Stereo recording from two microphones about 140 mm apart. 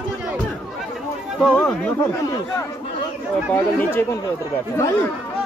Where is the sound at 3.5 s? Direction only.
15° left (ahead or behind).